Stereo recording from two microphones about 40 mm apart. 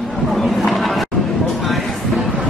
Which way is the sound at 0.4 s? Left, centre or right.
Centre.